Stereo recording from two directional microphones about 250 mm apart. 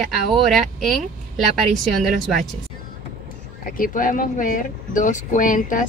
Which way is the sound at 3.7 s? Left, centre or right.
Left.